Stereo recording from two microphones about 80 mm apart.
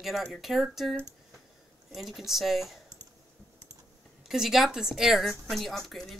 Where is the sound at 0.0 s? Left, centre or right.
Centre.